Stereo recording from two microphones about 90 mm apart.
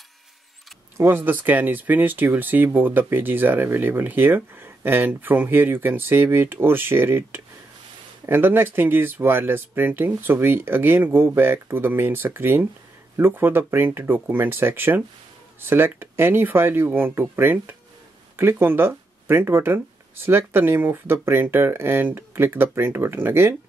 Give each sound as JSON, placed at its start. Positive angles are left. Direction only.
{"t": 0.9, "sound": "speech", "side_deg": -25}